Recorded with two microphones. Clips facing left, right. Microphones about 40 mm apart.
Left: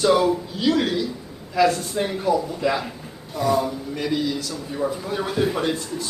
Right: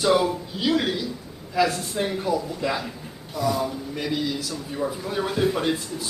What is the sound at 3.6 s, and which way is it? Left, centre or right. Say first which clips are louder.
A man's voice: left 2 dB; centre.